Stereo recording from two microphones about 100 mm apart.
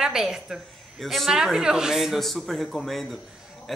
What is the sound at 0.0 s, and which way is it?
A woman's voice, 5° right (ahead or behind).